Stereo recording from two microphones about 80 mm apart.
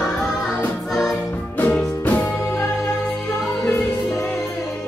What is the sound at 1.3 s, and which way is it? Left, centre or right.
Music, left.